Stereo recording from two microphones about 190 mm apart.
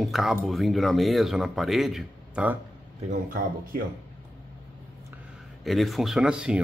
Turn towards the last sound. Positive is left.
turn(degrees=-5)  # may be behind; listen again after turning